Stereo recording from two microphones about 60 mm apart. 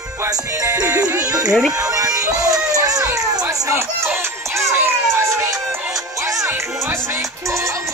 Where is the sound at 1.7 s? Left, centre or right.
Right.